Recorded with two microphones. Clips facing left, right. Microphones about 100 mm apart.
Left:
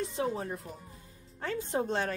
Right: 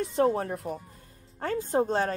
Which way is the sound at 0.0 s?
55° right (ahead or behind).